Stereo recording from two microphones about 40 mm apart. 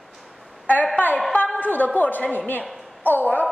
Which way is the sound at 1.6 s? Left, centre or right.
Left.